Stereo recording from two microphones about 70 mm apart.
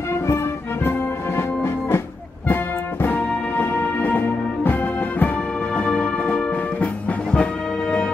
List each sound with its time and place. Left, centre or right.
0.8 s music: left
5.8 s music: centre